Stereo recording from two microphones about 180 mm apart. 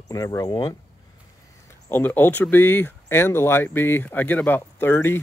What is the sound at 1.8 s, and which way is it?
Speech, 10° left (ahead or behind).